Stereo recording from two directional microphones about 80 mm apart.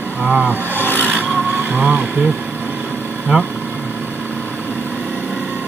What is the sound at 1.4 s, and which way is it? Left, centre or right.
Speech, right.